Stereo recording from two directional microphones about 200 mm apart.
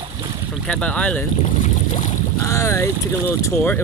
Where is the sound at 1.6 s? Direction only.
35° left (ahead or behind).